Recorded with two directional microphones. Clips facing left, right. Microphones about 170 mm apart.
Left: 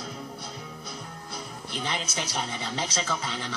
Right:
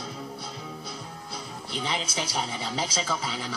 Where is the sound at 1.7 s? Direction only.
Centre (ahead or behind).